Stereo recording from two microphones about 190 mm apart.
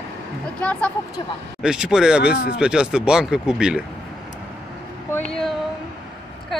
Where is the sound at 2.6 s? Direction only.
5° right (ahead or behind).